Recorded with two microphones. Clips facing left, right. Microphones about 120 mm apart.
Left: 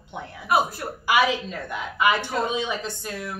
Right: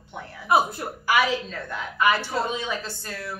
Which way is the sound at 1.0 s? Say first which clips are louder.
Left 1 dB; 15° left (ahead or behind).